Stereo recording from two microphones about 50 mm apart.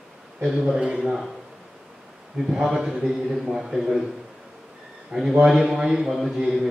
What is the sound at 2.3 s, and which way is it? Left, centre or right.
A man's voice, centre.